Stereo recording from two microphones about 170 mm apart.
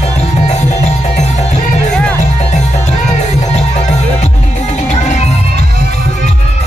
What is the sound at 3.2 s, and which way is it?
Music, 40° left (ahead or behind).